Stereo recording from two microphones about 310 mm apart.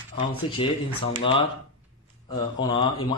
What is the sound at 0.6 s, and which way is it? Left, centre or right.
Speech, centre.